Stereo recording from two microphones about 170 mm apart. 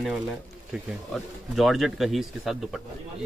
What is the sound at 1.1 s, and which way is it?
Speech, centre (ahead or behind).